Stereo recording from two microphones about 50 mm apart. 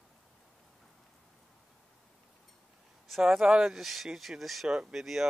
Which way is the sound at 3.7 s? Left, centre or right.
Centre.